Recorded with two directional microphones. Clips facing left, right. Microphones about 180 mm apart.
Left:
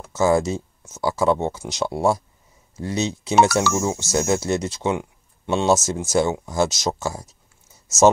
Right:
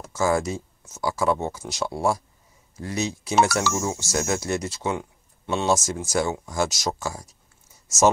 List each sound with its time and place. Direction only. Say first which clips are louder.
0.1 s speech: left 4 dB; 25° left (ahead or behind)